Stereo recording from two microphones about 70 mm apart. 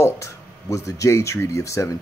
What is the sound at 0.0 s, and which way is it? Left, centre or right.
Speech, left.